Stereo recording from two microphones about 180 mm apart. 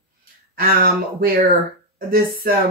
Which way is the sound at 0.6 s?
55° right (ahead or behind).